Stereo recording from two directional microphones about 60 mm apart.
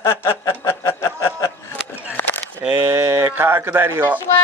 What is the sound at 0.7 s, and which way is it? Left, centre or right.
Snicker, left.